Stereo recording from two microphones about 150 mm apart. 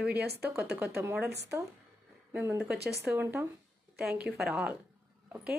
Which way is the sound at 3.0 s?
15° right (ahead or behind).